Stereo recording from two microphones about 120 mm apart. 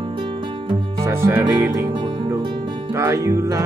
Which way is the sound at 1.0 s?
20° right (ahead or behind).